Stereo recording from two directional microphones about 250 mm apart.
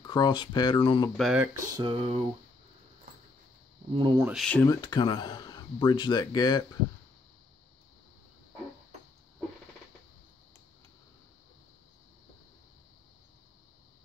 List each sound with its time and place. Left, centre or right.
0.0 s speech: centre
1.1 s speech: centre
1.7 s a sound: centre
3.9 s speech: centre
4.3 s speech: centre
4.8 s speech: centre